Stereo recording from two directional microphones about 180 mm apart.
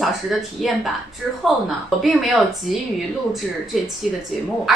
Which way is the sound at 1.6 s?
Centre (ahead or behind).